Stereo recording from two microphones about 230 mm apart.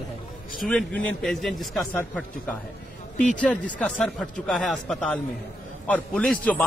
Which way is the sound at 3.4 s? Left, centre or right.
Centre.